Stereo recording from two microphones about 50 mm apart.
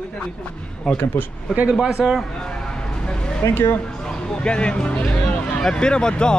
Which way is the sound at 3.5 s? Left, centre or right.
Left.